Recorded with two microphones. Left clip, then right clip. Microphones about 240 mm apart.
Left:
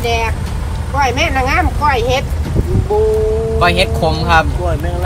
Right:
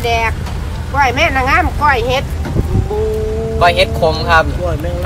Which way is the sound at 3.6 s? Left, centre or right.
Right.